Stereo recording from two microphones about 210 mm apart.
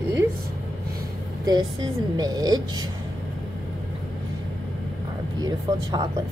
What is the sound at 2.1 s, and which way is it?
Speech, 20° right (ahead or behind).